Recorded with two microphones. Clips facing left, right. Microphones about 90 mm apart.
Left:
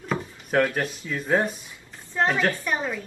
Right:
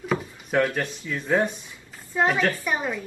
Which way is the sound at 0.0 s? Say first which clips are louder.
Right 2 dB; centre (ahead or behind).